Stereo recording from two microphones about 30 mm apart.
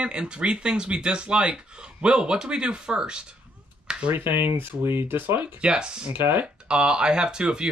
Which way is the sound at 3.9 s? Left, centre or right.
Right.